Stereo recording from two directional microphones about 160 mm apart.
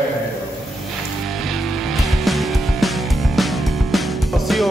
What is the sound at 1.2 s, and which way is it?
Music, centre (ahead or behind).